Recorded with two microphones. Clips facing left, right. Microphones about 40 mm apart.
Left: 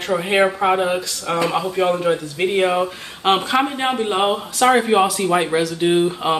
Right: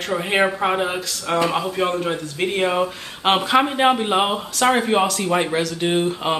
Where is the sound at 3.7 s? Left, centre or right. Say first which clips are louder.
Right 3 dB; centre.